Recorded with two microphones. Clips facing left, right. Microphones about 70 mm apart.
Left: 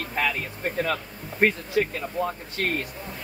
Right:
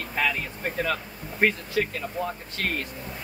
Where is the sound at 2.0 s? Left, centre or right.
Centre.